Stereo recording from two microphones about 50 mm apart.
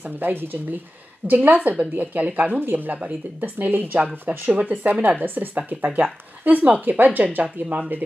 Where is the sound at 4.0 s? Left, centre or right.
Right.